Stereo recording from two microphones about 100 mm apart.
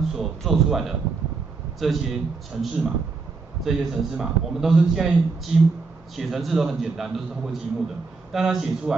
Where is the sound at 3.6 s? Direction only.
5° right (ahead or behind).